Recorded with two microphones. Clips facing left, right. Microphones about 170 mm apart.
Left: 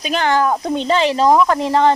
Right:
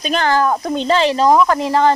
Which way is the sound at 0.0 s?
15° left (ahead or behind).